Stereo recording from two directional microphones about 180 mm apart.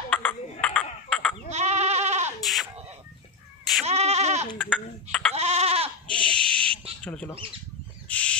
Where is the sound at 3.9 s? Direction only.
35° right (ahead or behind).